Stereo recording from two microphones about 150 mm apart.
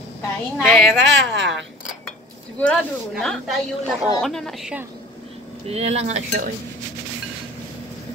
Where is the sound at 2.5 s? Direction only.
5° left (ahead or behind).